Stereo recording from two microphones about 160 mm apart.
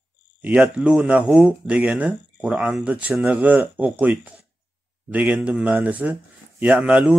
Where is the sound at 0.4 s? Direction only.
10° right (ahead or behind).